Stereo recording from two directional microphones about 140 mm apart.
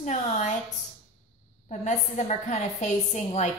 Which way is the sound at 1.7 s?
55° left (ahead or behind).